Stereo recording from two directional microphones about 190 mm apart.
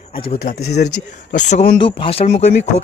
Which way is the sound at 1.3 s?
40° left (ahead or behind).